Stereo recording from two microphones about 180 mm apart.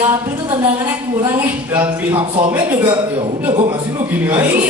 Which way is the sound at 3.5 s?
30° right (ahead or behind).